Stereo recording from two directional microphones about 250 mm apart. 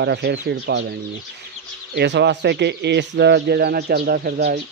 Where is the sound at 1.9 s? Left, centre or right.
Right.